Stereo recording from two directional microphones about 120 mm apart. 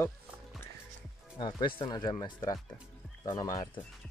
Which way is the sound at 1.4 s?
40° left (ahead or behind).